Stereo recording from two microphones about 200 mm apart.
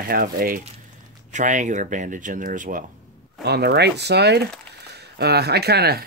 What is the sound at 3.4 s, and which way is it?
Speech, 55° right (ahead or behind).